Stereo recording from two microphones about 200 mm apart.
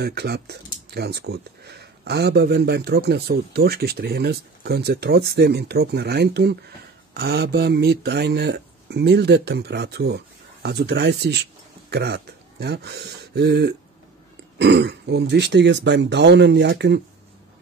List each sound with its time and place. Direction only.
0.0 s speech: 55° right (ahead or behind)